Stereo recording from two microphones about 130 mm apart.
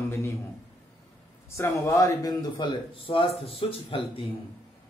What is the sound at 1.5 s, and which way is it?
Speech, 20° left (ahead or behind).